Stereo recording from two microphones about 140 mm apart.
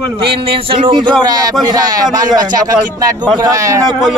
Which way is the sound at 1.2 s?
25° right (ahead or behind).